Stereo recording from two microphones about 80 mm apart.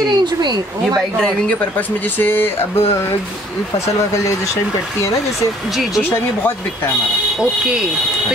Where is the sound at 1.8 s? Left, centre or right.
Left.